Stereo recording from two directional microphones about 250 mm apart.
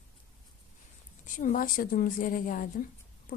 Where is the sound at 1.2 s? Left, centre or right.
Left.